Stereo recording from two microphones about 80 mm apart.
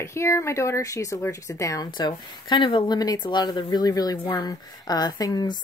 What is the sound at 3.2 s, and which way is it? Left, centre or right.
Speech, left.